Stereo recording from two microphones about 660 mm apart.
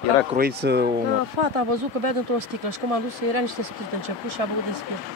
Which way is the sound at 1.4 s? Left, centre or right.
Right.